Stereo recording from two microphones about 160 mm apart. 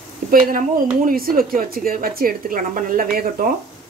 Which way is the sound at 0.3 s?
60° right (ahead or behind).